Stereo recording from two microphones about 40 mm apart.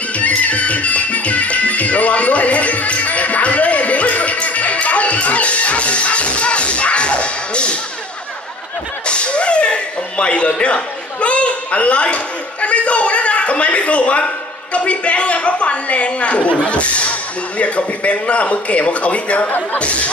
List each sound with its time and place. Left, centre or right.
0.2 s music: left
9.0 s speech: left